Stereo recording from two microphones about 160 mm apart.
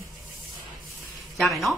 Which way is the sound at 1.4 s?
Centre (ahead or behind).